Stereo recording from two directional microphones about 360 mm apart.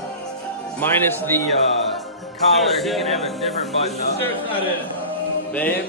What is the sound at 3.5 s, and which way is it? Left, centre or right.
Speech, centre.